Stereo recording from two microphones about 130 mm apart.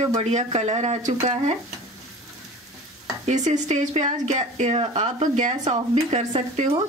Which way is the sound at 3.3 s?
65° right (ahead or behind).